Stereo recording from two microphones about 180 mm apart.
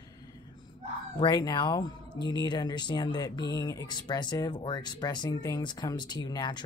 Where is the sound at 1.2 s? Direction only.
25° left (ahead or behind).